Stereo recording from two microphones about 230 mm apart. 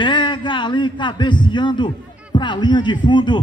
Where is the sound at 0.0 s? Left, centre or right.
Centre.